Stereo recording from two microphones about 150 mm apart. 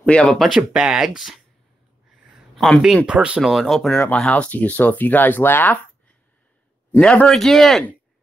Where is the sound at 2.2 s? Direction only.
Centre (ahead or behind).